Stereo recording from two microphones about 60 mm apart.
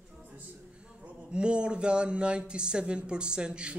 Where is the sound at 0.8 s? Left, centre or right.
Centre.